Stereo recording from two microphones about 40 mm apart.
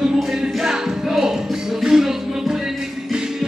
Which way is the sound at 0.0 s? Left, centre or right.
Centre.